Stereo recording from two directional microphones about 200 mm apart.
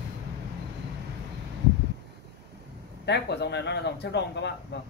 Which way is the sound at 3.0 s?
60° left (ahead or behind).